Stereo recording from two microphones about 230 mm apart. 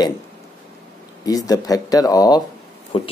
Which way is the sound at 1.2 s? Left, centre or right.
Centre.